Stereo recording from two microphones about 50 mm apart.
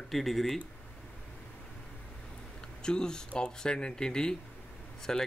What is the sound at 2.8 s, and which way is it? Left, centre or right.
Speech, centre.